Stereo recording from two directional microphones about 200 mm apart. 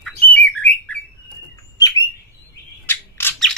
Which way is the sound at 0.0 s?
10° left (ahead or behind).